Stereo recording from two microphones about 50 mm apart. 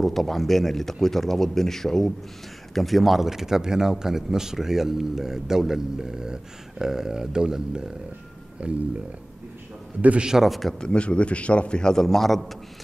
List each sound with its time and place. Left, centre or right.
0.0 s a man's voice: centre; by 8.8 s right
10.2 s speech: centre
10.8 s a man's voice: centre